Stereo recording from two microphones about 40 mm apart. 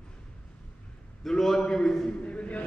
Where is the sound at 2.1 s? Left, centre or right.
Left.